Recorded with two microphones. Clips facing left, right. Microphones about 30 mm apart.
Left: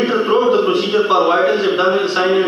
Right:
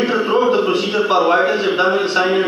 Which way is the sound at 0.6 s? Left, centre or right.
Left.